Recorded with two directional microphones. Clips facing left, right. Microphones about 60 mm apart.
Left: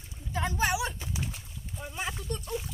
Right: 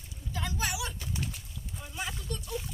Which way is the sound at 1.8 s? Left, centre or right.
Left.